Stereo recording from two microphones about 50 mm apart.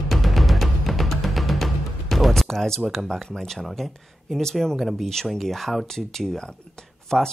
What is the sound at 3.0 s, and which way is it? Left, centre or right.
Speech, centre.